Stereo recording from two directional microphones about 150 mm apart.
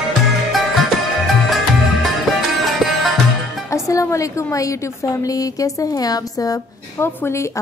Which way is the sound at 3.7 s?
20° left (ahead or behind).